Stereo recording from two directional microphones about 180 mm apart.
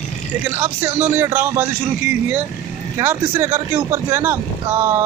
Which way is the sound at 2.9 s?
15° right (ahead or behind).